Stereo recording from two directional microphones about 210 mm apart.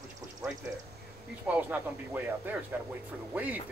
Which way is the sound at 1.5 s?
5° right (ahead or behind).